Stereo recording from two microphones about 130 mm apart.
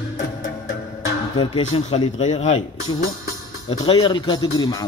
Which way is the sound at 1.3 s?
40° left (ahead or behind).